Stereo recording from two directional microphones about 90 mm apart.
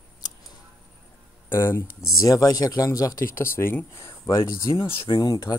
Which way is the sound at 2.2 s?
40° left (ahead or behind).